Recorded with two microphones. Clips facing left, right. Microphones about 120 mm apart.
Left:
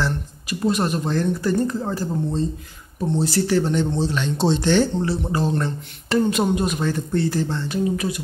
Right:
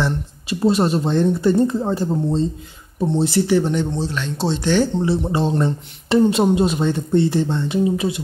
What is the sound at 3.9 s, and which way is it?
Speech, centre (ahead or behind).